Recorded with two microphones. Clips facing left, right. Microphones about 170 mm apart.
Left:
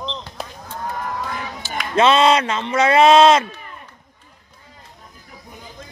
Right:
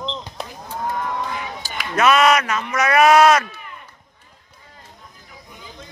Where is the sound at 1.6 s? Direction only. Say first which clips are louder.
Left 4 dB; 40° right (ahead or behind).